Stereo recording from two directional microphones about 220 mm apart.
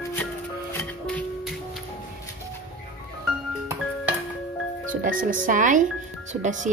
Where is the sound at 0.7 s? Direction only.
5° left (ahead or behind).